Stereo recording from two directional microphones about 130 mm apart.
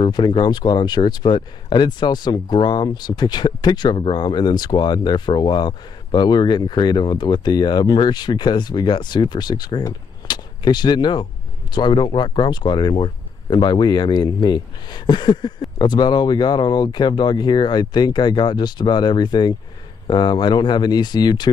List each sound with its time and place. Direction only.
0.0 s speech: 40° left (ahead or behind)